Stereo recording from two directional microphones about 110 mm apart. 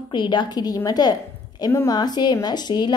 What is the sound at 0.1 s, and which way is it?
A woman's voice, 45° left (ahead or behind).